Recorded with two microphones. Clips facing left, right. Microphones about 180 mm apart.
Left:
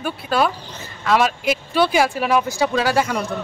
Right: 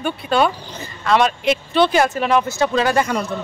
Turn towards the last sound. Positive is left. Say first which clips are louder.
# right 1 dB
turn(degrees=5)  # may be behind; listen again after turning